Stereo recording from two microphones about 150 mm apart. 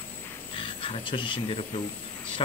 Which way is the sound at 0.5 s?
35° left (ahead or behind).